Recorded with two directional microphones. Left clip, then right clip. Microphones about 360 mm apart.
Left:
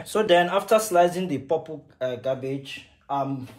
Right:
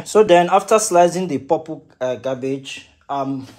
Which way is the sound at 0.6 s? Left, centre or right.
Centre.